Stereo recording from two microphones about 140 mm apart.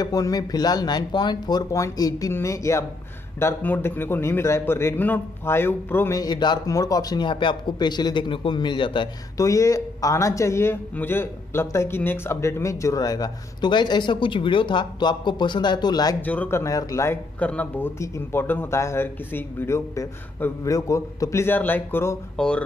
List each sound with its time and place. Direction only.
0.0 s a man's voice: 25° left (ahead or behind)
9.4 s a man's voice: 25° left (ahead or behind)
16.2 s speech: 10° left (ahead or behind)